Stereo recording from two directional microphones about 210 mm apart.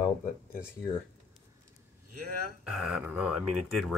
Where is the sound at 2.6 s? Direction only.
Centre (ahead or behind).